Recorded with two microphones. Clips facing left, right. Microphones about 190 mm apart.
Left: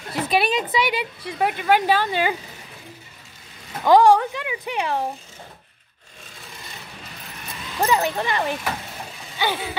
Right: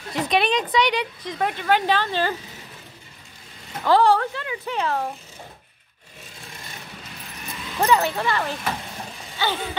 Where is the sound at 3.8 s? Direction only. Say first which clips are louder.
Left 3 dB; 15° left (ahead or behind).